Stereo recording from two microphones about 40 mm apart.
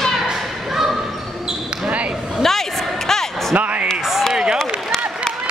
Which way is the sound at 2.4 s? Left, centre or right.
Centre.